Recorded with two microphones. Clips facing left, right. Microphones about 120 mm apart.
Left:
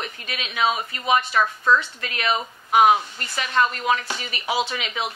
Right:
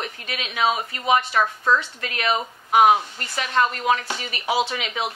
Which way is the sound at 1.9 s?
50° right (ahead or behind).